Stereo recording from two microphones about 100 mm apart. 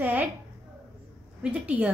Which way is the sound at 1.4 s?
10° right (ahead or behind).